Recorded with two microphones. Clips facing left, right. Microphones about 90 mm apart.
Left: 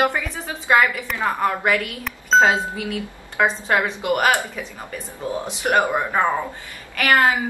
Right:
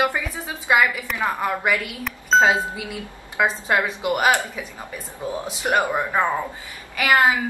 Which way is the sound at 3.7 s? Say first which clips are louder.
Left 1 dB; 15° right (ahead or behind).